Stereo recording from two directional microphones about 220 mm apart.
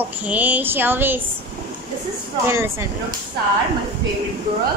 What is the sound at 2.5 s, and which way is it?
Speech, 10° right (ahead or behind).